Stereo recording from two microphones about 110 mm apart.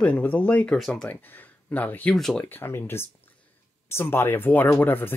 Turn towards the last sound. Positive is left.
turn(degrees=20)  # may be behind; listen again after turning